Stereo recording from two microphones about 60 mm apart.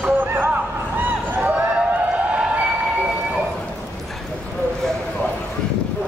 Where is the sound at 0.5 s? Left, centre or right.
Right.